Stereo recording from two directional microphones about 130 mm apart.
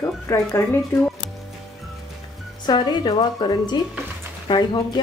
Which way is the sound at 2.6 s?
35° left (ahead or behind).